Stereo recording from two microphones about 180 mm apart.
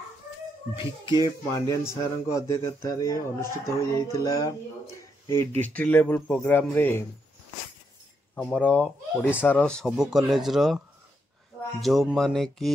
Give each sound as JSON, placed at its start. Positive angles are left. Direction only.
{"t": 0.7, "sound": "speech", "side_deg": 25}
{"t": 3.9, "sound": "a sound", "side_deg": 20}
{"t": 5.2, "sound": "speech", "side_deg": 15}
{"t": 8.4, "sound": "speech", "side_deg": 5}
{"t": 11.8, "sound": "speech", "side_deg": 0}